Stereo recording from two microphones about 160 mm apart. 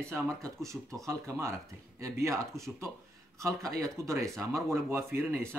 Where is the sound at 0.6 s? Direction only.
20° right (ahead or behind).